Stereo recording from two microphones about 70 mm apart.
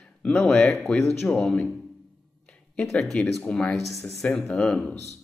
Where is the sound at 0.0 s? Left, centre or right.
Centre.